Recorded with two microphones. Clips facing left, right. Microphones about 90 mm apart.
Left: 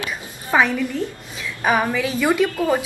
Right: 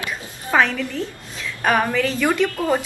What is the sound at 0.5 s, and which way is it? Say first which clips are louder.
A woman's voice: left 1 dB; 5° left (ahead or behind).